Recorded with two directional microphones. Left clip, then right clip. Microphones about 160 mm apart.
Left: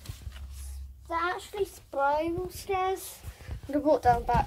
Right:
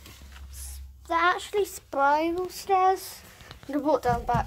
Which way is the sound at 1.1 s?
50° right (ahead or behind).